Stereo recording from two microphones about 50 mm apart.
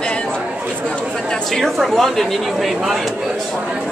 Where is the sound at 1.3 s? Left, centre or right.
Centre.